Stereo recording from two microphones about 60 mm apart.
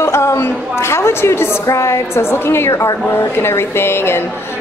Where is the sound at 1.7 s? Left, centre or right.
Left.